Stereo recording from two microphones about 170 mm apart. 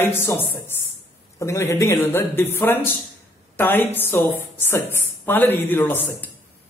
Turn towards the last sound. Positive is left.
turn(degrees=10)  # may be behind; listen again after turning